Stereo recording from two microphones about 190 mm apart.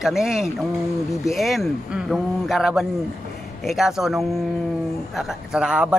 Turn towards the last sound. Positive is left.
turn(degrees=-5)  # may be behind; listen again after turning